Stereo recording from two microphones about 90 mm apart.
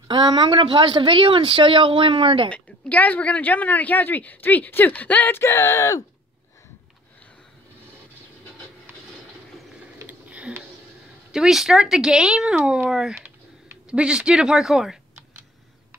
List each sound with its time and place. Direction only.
0.1 s speech: 50° right (ahead or behind); by 2.5 s 75° right (ahead or behind)
2.5 s speech: 15° left (ahead or behind); by 6.0 s 35° left (ahead or behind)
10.0 s a sound: 15° right (ahead or behind)
11.3 s speech: 5° right (ahead or behind)